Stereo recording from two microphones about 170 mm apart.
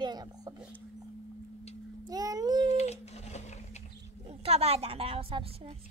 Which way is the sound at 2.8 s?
40° left (ahead or behind).